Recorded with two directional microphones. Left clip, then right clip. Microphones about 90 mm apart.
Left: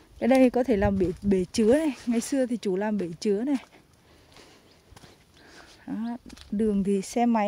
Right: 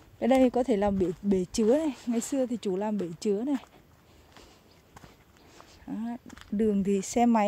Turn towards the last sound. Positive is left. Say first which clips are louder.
# even
turn(degrees=5)  # may be behind; listen again after turning